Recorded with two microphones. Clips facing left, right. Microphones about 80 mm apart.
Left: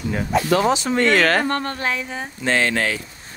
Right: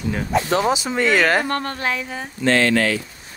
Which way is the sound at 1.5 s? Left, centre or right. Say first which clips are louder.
Even; right.